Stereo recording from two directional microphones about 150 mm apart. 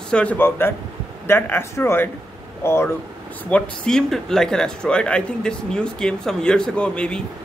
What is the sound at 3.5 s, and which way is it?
Speech, 5° left (ahead or behind).